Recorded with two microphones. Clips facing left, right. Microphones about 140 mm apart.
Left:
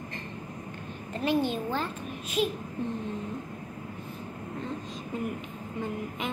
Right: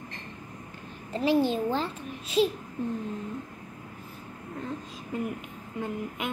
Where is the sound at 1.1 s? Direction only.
30° right (ahead or behind).